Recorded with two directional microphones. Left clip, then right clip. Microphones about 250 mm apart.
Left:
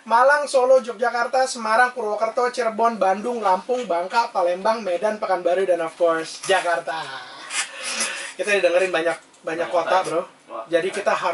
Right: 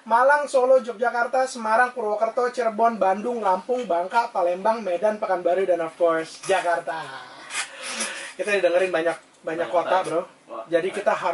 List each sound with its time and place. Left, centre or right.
0.1 s speech: centre
0.5 s speech: right
2.0 s speech: centre